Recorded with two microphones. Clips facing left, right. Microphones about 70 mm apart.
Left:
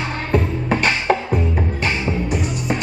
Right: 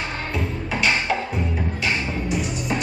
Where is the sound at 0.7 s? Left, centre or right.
Left.